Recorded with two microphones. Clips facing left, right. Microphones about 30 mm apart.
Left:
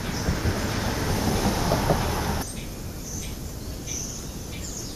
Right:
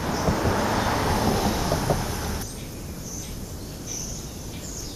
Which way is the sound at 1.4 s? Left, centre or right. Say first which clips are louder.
Left 1 dB; centre.